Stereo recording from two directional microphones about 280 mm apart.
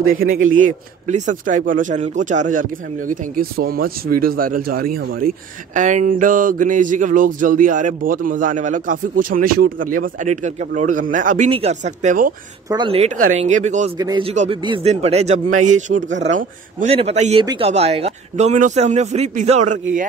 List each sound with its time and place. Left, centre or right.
0.0 s speech: right
12.6 s speech: centre
13.9 s speech: centre
15.9 s speech: right
16.3 s speech: right